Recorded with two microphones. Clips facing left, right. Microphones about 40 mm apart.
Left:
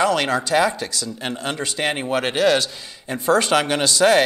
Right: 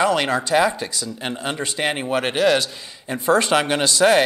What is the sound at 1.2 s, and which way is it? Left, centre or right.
Speech, centre.